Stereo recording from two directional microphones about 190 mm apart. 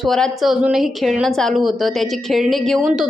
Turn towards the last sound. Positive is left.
turn(degrees=0)  # may be behind; listen again after turning